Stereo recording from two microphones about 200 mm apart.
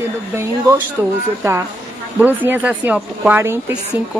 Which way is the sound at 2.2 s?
10° right (ahead or behind).